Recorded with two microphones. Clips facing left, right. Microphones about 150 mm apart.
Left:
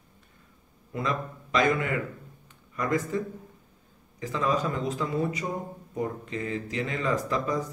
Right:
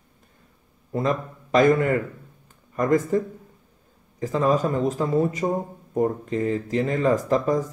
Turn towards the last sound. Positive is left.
turn(degrees=-45)  # may be behind; listen again after turning